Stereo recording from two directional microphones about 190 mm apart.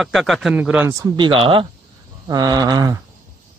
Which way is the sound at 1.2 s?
25° right (ahead or behind).